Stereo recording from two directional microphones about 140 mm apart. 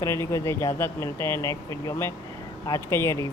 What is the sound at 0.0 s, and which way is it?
Speech, 20° left (ahead or behind).